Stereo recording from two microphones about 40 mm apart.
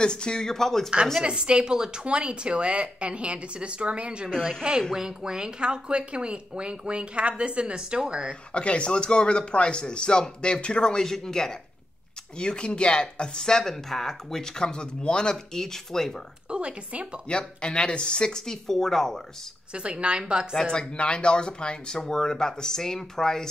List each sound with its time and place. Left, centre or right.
0.0 s speech: left
1.2 s speech: right
4.3 s a woman's voice: centre
4.9 s speech: centre
8.5 s speech: left; by 11.5 s centre
12.4 s speech: left
16.4 s speech: right
17.3 s speech: left
19.7 s speech: right
20.5 s speech: centre